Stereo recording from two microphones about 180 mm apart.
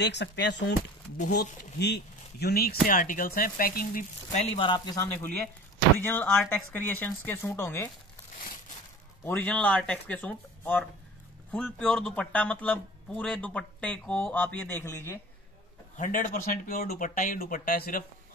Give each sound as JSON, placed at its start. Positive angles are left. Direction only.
{"t": 0.0, "sound": "speech", "side_deg": 70}
{"t": 1.8, "sound": "speech", "side_deg": 65}
{"t": 4.3, "sound": "speech", "side_deg": 30}
{"t": 9.2, "sound": "speech", "side_deg": 10}
{"t": 16.0, "sound": "speech", "side_deg": 50}